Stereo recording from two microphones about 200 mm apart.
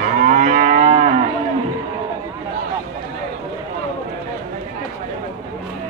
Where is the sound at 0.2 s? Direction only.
40° right (ahead or behind).